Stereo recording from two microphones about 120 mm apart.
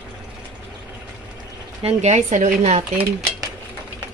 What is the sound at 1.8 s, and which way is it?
Speech, 70° right (ahead or behind).